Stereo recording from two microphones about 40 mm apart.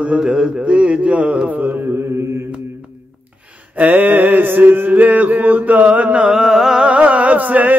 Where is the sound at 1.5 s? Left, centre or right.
Right.